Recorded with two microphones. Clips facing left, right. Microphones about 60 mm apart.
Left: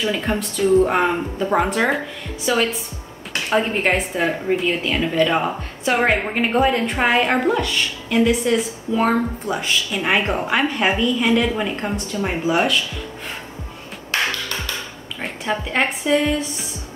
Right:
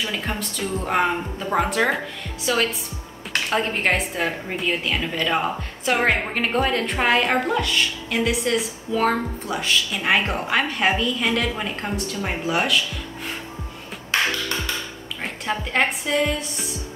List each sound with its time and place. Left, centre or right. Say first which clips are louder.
0.0 s a woman's voice: left 5 dB; centre
15.2 s speech: left 3 dB; centre